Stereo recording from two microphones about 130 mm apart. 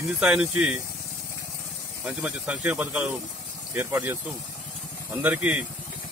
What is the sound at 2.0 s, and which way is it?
Speech, 10° right (ahead or behind).